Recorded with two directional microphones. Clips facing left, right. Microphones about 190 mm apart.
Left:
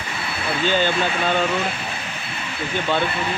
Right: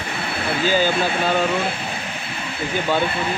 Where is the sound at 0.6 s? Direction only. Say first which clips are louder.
Right 1 dB; 5° right (ahead or behind).